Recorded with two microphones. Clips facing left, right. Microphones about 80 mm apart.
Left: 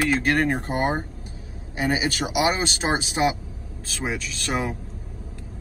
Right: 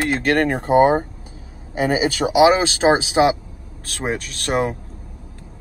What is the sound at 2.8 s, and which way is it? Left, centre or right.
Speech, right.